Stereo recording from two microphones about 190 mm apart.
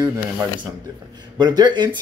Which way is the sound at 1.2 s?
20° right (ahead or behind).